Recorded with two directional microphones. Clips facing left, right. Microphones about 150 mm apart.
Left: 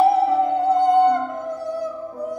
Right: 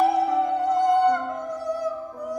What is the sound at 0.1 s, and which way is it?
Music, 25° left (ahead or behind).